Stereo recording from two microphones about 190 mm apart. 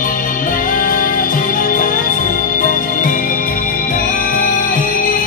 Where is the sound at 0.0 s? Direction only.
45° left (ahead or behind).